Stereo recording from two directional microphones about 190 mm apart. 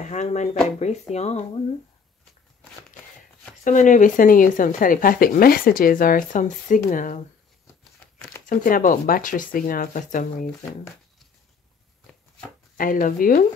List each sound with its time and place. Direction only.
0.0 s speech: 40° left (ahead or behind)
3.6 s speech: 40° left (ahead or behind)
8.0 s crumpling: 5° left (ahead or behind)
8.5 s speech: 45° left (ahead or behind)
12.7 s speech: 45° left (ahead or behind)